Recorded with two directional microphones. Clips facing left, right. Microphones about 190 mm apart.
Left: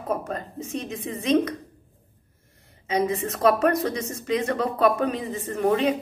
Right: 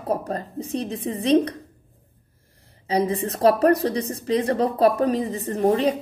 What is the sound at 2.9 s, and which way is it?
A woman's voice, 35° right (ahead or behind).